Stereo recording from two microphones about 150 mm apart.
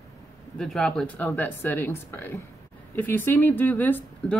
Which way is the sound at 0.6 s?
5° left (ahead or behind).